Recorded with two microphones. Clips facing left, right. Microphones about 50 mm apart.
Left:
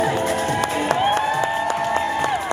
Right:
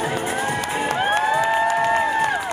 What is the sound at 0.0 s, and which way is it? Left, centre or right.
Music, centre.